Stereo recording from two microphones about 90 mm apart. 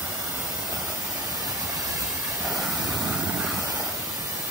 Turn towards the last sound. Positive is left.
turn(degrees=-10)  # may be behind; listen again after turning